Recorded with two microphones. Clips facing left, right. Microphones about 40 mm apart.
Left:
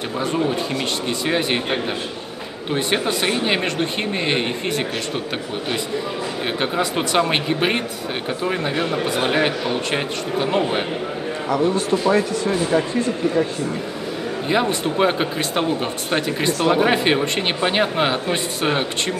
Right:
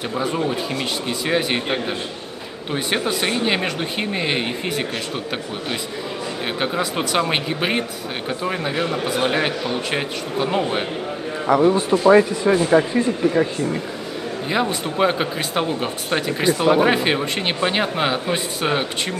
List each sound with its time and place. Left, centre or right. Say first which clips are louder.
0.2 s speech: left 2 dB; centre
6.6 s speech: left 1 dB; centre
11.4 s a man's voice: right 4 dB; centre
14.5 s speech: left 2 dB; centre